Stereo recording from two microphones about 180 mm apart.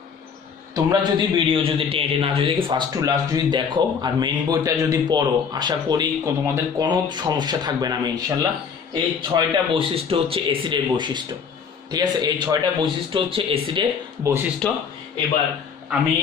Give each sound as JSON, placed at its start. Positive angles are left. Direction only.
{"t": 0.7, "sound": "a man's voice", "side_deg": -20}
{"t": 14.2, "sound": "speech", "side_deg": -15}